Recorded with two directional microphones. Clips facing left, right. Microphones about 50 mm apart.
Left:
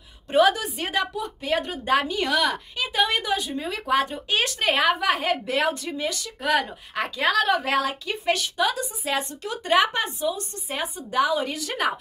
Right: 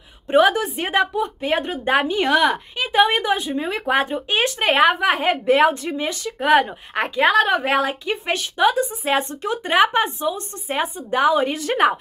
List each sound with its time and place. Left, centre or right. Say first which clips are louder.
0.3 s a woman's voice: right 4 dB; right